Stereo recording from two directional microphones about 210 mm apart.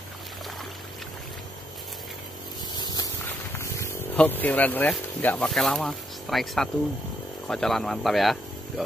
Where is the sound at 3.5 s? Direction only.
15° left (ahead or behind).